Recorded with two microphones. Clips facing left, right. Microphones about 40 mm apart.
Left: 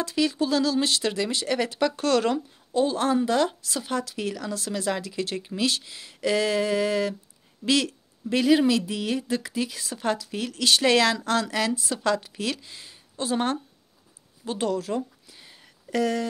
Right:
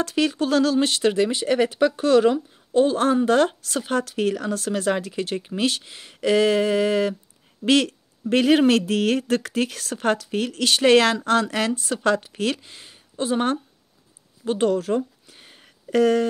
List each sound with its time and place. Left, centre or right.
0.0 s speech: right; by 2.3 s centre
2.7 s speech: right
15.2 s a sound: right